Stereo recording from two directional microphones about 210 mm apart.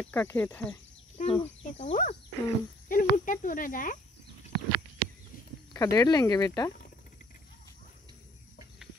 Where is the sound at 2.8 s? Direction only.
40° left (ahead or behind).